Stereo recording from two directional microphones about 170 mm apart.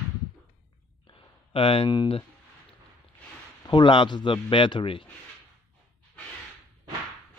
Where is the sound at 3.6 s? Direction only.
30° left (ahead or behind).